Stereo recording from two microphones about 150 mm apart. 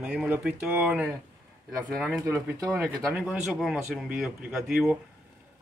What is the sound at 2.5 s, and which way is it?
Speech, 25° right (ahead or behind).